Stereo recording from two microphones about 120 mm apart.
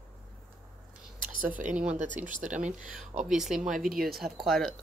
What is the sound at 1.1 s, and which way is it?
Whispering, 90° right.